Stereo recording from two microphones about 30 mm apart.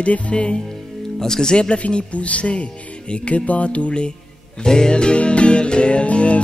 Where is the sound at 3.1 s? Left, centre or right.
Left.